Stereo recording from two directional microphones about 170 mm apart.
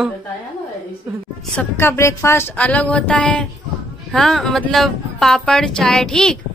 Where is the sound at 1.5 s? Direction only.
15° left (ahead or behind).